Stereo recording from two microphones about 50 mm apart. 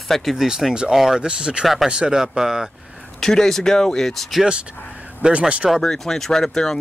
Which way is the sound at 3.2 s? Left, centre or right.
Centre.